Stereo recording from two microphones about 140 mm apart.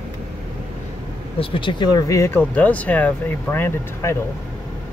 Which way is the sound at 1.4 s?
35° left (ahead or behind).